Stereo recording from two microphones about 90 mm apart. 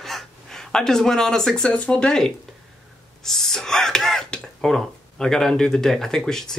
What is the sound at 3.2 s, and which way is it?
Whispering, 5° left (ahead or behind).